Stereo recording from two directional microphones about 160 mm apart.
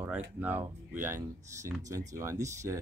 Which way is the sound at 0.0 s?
10° right (ahead or behind).